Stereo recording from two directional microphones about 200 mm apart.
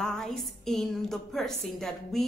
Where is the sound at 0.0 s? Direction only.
Centre (ahead or behind).